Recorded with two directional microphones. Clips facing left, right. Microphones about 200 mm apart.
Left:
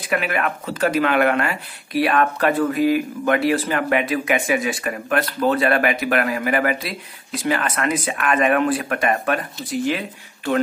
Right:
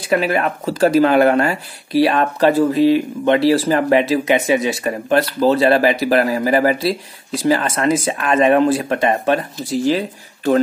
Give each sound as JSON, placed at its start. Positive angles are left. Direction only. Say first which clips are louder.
{"t": 0.1, "sound": "speech", "louder": "right 5 dB", "side_deg": -30}